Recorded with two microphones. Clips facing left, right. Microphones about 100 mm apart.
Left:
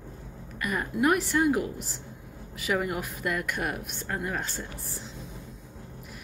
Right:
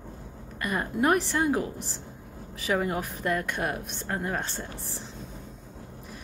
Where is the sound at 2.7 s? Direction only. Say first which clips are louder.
Right 1 dB; 30° right (ahead or behind).